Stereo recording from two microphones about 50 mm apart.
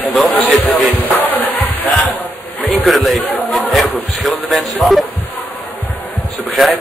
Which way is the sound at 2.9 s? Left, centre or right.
Centre.